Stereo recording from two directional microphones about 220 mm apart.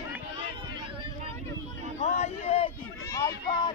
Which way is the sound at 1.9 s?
30° left (ahead or behind).